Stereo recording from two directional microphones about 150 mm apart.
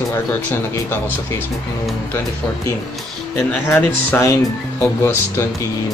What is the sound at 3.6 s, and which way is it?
Speech, 15° left (ahead or behind).